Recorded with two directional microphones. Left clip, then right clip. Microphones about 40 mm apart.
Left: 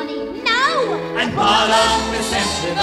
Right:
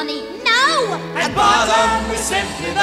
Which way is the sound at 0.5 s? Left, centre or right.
Right.